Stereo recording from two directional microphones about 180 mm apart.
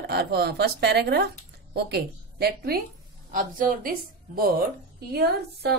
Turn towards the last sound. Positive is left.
turn(degrees=-60)  # may be behind; listen again after turning